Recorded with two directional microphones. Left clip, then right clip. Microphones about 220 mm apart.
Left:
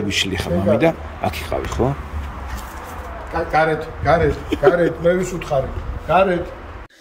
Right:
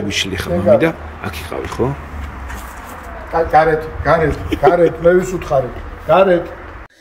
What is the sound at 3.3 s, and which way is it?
A man's voice, 30° right (ahead or behind).